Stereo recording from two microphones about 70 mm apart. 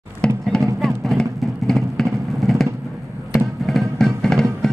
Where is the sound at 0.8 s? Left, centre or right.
Centre.